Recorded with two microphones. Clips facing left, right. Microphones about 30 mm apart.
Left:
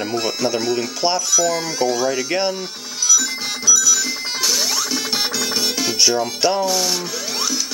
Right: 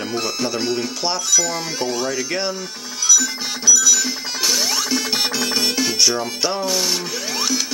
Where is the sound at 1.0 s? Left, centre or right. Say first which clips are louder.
Left 2 dB; centre.